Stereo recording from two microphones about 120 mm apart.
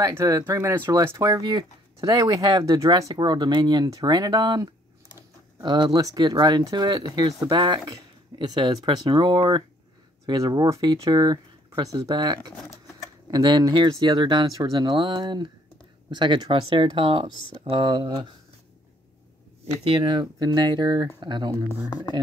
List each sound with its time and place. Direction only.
0.1 s speech: 20° right (ahead or behind); by 9.6 s 40° right (ahead or behind)
10.2 s speech: 30° right (ahead or behind)
19.8 s speech: 40° right (ahead or behind)